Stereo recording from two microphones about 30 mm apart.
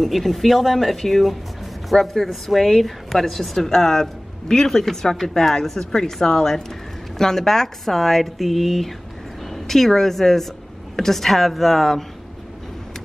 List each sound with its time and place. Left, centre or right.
0.0 s a woman's voice: centre